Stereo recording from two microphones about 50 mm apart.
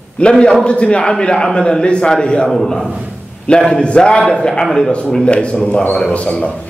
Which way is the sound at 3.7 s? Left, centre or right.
Centre.